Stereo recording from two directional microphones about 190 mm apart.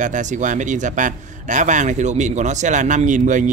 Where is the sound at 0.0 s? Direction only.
40° right (ahead or behind).